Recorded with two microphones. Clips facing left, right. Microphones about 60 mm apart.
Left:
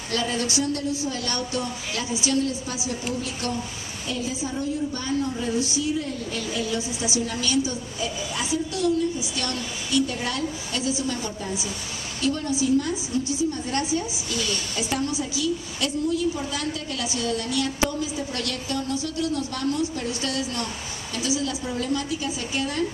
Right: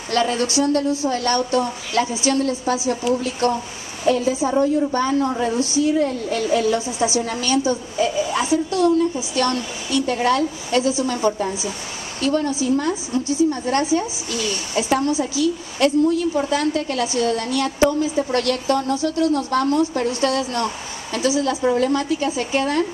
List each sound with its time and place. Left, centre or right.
0.1 s a woman's voice: right
4.5 s a woman's voice: right
12.2 s a woman's voice: right